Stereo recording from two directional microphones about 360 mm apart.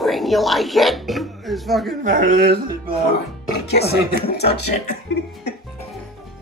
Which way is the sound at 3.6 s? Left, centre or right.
Left.